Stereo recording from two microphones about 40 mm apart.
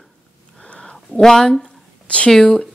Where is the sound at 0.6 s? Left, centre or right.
Left.